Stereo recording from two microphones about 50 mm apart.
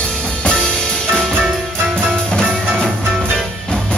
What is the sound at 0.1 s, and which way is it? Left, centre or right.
Music, left.